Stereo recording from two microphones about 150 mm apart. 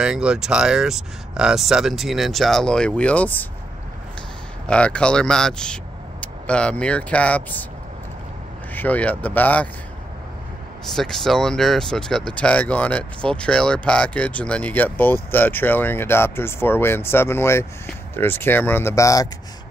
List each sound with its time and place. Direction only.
0.0 s speech: 5° right (ahead or behind); by 3.4 s 10° left (ahead or behind)
4.6 s speech: 5° left (ahead or behind)
8.7 s speech: 10° left (ahead or behind)
10.9 s speech: 5° left (ahead or behind); by 19.2 s 20° left (ahead or behind)